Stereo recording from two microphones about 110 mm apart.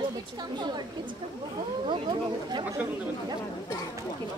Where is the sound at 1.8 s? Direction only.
45° right (ahead or behind).